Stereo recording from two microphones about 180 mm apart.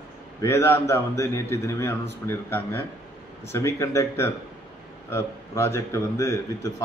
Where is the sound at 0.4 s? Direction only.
15° left (ahead or behind).